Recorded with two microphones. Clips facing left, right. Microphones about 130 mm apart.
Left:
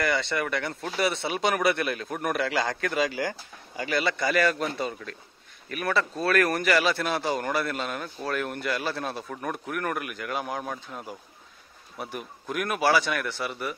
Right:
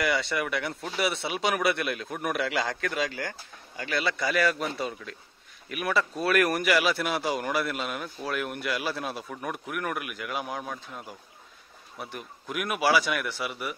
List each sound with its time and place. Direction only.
0.0 s speech: 5° right (ahead or behind)